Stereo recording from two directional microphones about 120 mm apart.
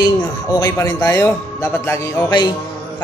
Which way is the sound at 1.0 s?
20° left (ahead or behind).